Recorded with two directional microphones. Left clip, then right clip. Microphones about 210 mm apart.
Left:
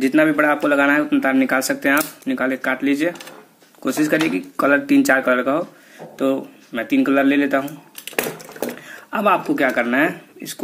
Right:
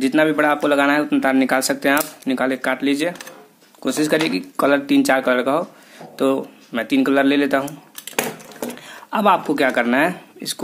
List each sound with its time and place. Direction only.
0.0 s speech: 20° right (ahead or behind)
6.2 s speech: 30° right (ahead or behind)
8.8 s speech: 20° right (ahead or behind)